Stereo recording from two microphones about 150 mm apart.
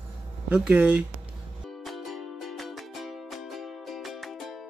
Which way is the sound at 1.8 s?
Centre (ahead or behind).